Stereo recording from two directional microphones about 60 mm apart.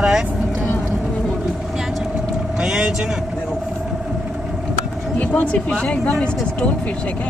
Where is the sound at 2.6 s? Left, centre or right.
Centre.